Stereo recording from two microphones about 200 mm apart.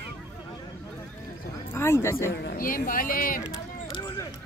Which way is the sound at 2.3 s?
55° left (ahead or behind).